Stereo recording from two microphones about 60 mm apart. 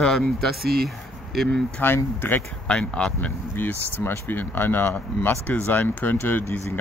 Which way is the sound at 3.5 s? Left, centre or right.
Left.